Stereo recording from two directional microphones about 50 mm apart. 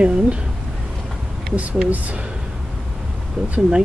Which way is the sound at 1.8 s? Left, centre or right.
Right.